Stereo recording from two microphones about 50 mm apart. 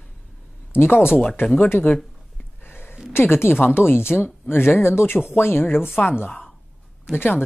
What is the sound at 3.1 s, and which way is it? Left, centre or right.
Speech, left.